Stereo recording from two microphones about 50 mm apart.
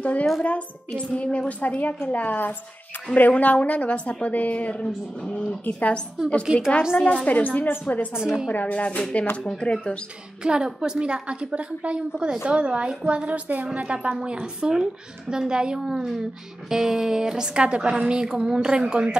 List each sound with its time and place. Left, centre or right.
0.0 s a woman's voice: left
6.5 s speech: centre
7.2 s a woman's voice: left
9.2 s a woman's voice: left
9.5 s speech: centre
10.4 s a woman's voice: centre